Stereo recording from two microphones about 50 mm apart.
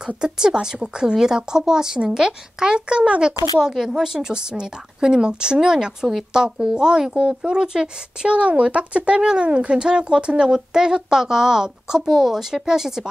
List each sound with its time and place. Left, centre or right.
0.2 s a woman's voice: centre